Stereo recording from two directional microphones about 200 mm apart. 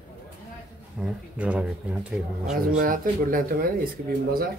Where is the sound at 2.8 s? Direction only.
45° right (ahead or behind).